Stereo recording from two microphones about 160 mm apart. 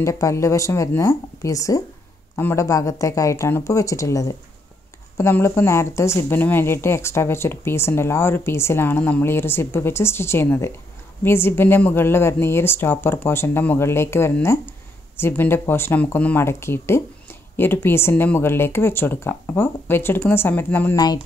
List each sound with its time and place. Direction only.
0.0 s speech: 20° left (ahead or behind)